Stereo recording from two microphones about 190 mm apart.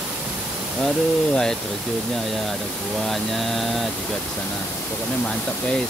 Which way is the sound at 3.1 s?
Centre (ahead or behind).